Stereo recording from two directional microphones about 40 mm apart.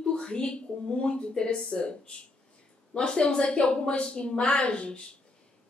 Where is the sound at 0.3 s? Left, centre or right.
Left.